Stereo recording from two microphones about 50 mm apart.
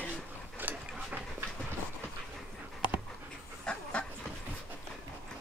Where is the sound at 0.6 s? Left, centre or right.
Right.